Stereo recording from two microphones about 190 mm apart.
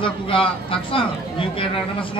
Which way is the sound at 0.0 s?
30° left (ahead or behind).